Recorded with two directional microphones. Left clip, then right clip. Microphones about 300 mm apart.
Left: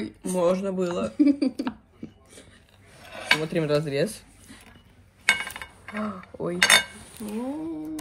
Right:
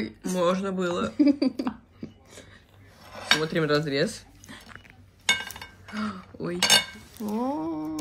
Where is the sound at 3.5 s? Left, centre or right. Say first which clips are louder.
Even; centre.